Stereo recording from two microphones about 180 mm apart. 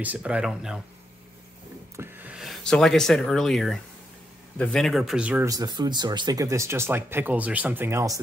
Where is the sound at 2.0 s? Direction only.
5° right (ahead or behind).